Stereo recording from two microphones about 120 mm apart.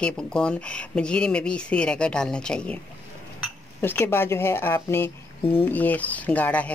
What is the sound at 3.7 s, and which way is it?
Speech, 15° left (ahead or behind).